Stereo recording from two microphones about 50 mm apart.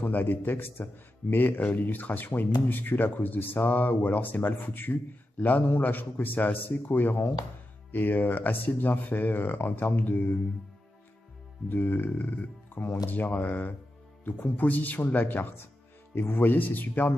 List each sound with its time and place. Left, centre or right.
0.0 s speech: left
11.7 s speech: left